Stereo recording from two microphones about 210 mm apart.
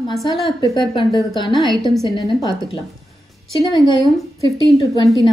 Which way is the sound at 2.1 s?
20° left (ahead or behind).